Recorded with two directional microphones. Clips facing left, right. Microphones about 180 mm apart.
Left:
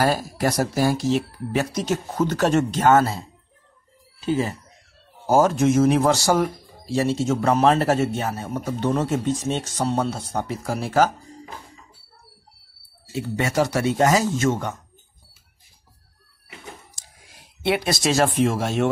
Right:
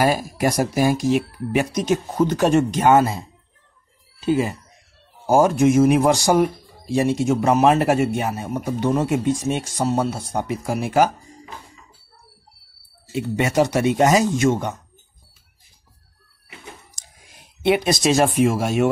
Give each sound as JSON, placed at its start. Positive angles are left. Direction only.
{"t": 0.0, "sound": "speech", "side_deg": -15}
{"t": 4.3, "sound": "speech", "side_deg": -15}
{"t": 13.1, "sound": "speech", "side_deg": -20}
{"t": 17.6, "sound": "speech", "side_deg": -20}